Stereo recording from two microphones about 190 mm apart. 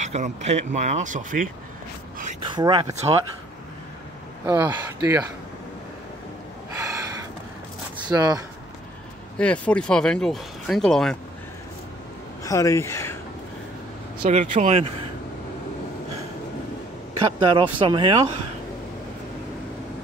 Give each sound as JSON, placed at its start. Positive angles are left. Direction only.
{"t": 0.0, "sound": "speech", "side_deg": -35}
{"t": 2.4, "sound": "speech", "side_deg": -20}
{"t": 4.5, "sound": "speech", "side_deg": -10}
{"t": 6.7, "sound": "gasp", "side_deg": -15}
{"t": 8.1, "sound": "speech", "side_deg": -20}
{"t": 9.4, "sound": "speech", "side_deg": 5}
{"t": 12.4, "sound": "speech", "side_deg": 15}
{"t": 14.2, "sound": "speech", "side_deg": -40}
{"t": 17.4, "sound": "speech", "side_deg": -25}